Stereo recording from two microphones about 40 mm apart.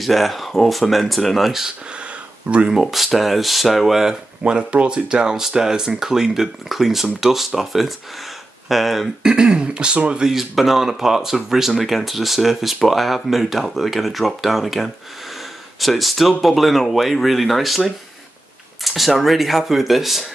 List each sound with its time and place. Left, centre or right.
0.0 s speech: centre
2.7 s speech: centre
4.4 s speech: right; by 9.1 s centre
9.2 s speech: centre
10.2 s speech: centre
18.9 s speech: centre